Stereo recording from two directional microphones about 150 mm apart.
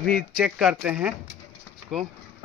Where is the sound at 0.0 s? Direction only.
Centre (ahead or behind).